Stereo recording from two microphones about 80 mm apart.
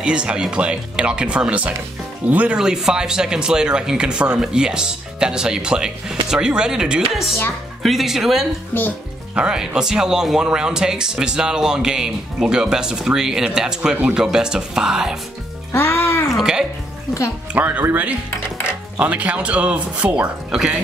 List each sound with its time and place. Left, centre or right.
0.0 s speech: centre
15.7 s music: left
16.3 s speech: centre
17.6 s speech: right